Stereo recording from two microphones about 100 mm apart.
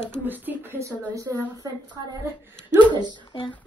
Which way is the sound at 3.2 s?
50° left (ahead or behind).